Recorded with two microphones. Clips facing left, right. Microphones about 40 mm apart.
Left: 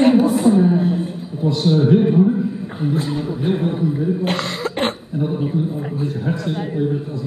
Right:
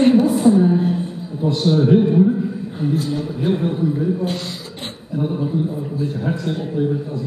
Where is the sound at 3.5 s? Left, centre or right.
Centre.